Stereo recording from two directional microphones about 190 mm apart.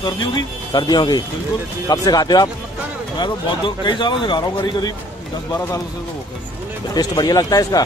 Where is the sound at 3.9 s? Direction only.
25° left (ahead or behind).